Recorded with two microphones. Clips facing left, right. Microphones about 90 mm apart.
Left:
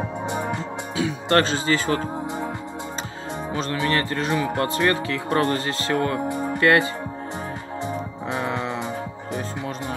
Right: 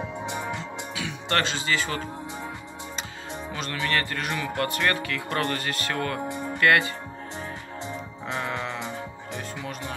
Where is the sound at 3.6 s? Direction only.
30° left (ahead or behind).